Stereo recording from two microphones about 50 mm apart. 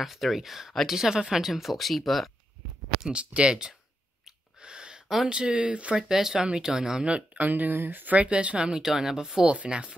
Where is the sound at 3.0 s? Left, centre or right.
Right.